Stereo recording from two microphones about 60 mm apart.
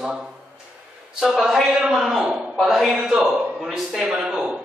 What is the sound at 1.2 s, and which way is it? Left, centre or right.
A man's voice, centre.